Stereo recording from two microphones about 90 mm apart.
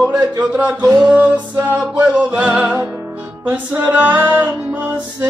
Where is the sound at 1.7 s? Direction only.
20° right (ahead or behind).